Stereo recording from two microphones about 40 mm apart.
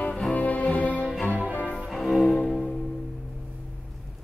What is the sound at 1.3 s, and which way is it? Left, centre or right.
Music, right.